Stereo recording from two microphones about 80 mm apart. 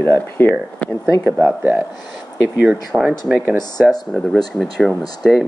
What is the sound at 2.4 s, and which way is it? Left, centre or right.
Speech, centre.